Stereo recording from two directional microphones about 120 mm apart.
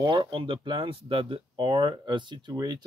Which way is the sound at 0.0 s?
40° right (ahead or behind).